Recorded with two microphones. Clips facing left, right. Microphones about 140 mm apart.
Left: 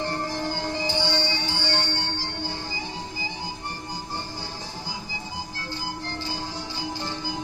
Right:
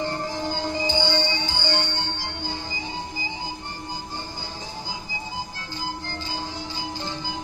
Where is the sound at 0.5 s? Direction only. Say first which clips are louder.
Right 2 dB; 20° right (ahead or behind).